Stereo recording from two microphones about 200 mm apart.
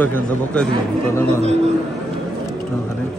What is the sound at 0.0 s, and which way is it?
Speech, 10° left (ahead or behind).